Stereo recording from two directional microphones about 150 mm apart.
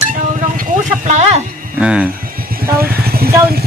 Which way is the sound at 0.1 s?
60° right (ahead or behind).